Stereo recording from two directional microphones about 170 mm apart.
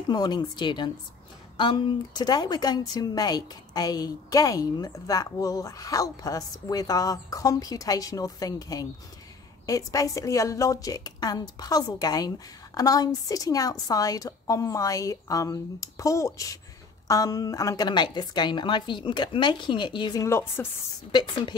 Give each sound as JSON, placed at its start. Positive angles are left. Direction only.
{"t": 0.1, "sound": "a woman's voice", "side_deg": 25}
{"t": 20.2, "sound": "speech", "side_deg": 15}
{"t": 21.1, "sound": "a woman's voice", "side_deg": 25}